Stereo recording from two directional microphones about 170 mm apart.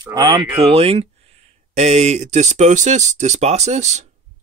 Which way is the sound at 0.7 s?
35° right (ahead or behind).